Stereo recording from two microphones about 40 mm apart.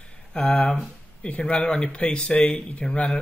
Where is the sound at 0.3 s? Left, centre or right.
Left.